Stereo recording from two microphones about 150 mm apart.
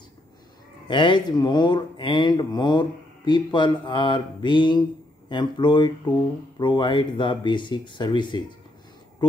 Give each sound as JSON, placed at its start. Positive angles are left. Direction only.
{"t": 0.8, "sound": "speech", "side_deg": 30}